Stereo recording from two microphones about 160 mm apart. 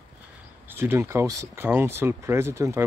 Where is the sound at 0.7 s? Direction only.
15° right (ahead or behind).